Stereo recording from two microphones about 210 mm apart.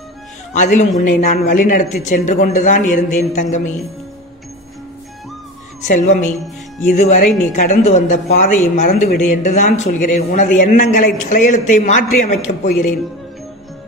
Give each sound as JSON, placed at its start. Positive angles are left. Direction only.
{"t": 0.5, "sound": "speech", "side_deg": 35}
{"t": 5.9, "sound": "speech", "side_deg": 35}